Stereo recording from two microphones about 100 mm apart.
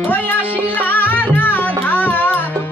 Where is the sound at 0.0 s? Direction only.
20° left (ahead or behind).